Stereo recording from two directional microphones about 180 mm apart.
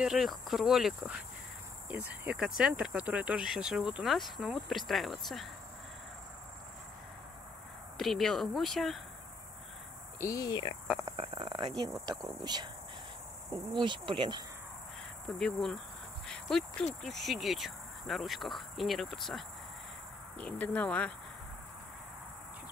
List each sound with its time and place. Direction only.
0.0 s speech: 5° right (ahead or behind)
8.0 s speech: centre (ahead or behind)
10.2 s speech: 20° left (ahead or behind)
11.1 s speech: 30° right (ahead or behind)
15.2 s speech: 5° left (ahead or behind)